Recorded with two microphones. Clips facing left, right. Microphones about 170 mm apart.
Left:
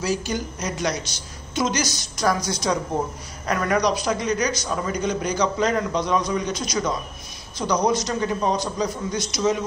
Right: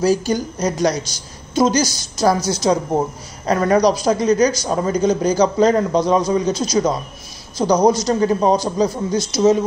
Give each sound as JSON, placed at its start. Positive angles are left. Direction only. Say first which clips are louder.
{"t": 0.0, "sound": "a man's voice", "louder": "right 8 dB", "side_deg": -35}